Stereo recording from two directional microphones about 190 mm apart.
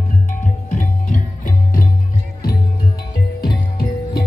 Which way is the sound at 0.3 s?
45° left (ahead or behind).